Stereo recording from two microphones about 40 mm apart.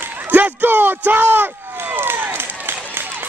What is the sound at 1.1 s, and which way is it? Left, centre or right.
Run, right.